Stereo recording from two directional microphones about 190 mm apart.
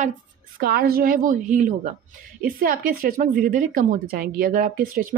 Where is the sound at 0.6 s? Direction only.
50° right (ahead or behind).